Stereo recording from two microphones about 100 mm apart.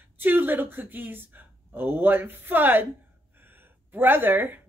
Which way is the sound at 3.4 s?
20° right (ahead or behind).